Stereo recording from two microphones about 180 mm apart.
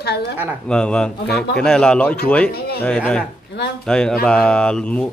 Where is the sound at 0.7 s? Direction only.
5° left (ahead or behind).